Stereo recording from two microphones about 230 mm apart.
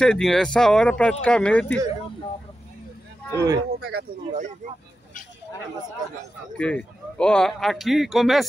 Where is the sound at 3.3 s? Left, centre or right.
Centre.